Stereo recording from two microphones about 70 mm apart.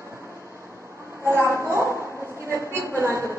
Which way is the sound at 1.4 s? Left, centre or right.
Right.